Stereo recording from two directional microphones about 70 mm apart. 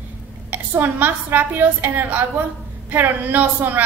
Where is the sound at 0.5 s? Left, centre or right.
Right.